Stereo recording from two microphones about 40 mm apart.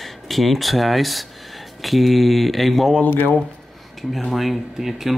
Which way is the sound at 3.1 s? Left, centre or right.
Left.